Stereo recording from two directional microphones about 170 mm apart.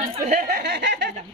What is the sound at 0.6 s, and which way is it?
Speech, 85° right.